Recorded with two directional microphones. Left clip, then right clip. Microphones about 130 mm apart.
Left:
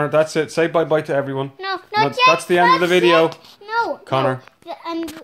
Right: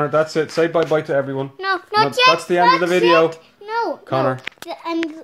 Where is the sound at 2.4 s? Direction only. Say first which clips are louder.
Even; 25° left (ahead or behind).